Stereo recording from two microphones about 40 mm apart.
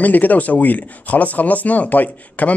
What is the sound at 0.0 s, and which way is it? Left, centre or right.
Speech, left.